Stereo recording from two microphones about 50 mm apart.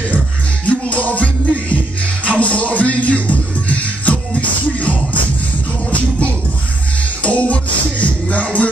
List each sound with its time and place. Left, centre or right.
0.7 s music: left